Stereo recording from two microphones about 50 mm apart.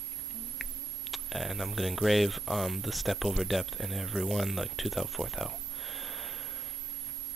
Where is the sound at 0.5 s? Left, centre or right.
Centre.